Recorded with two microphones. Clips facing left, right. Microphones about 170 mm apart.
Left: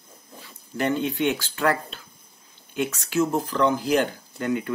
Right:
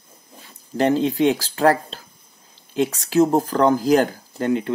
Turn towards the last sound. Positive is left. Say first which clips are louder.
# right 5 dB
turn(degrees=-30)  # may be behind; listen again after turning